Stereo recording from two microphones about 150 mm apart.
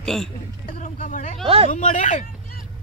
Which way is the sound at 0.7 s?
55° left (ahead or behind).